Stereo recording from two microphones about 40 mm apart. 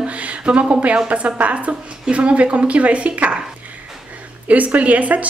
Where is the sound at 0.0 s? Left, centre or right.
Right.